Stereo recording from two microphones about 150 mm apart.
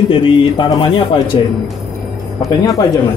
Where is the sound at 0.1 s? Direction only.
30° left (ahead or behind).